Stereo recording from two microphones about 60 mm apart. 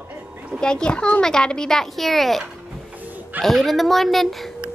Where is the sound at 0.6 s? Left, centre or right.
Centre.